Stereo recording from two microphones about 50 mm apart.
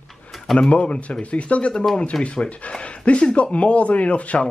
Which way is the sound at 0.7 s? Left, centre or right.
Left.